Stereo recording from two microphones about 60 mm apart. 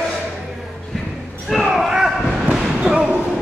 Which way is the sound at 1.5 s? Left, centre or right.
Centre.